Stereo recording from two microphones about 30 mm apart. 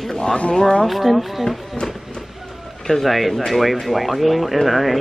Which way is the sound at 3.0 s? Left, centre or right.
Centre.